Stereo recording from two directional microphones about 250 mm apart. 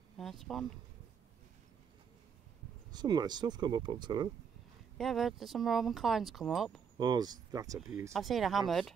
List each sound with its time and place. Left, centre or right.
0.2 s speech: centre
2.9 s speech: centre
4.9 s speech: centre
7.0 s speech: centre
8.1 s speech: centre